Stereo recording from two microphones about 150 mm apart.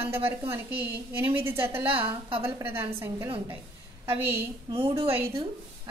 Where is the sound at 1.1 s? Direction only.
15° right (ahead or behind).